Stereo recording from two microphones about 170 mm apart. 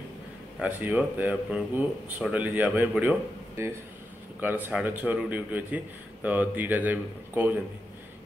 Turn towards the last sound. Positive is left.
turn(degrees=-10)  # may be behind; listen again after turning